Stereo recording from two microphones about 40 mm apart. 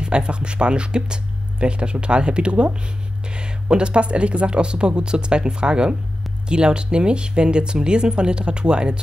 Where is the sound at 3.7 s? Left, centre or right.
Right.